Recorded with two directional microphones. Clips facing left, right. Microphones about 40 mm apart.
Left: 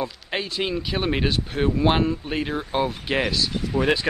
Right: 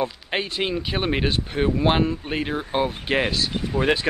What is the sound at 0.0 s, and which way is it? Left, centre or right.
Speech, right.